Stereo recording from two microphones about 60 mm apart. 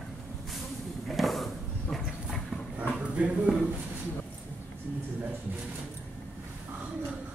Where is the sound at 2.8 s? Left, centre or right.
Centre.